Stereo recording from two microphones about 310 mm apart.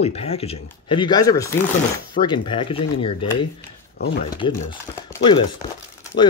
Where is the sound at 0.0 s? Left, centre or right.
Centre.